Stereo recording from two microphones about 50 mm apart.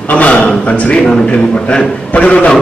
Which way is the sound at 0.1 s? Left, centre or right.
Left.